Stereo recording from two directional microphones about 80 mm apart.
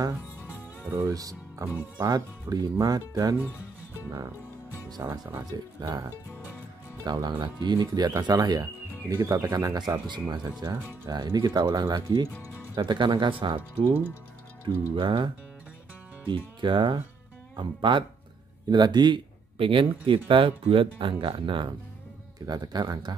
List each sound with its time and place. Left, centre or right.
0.9 s speech: right
1.6 s speech: right
2.0 s speech: right
3.3 s speech: right
5.0 s speech: right
5.4 s speech: right
7.1 s speech: right
9.1 s speech: right
15.0 s speech: right
18.7 s speech: right
22.5 s speech: right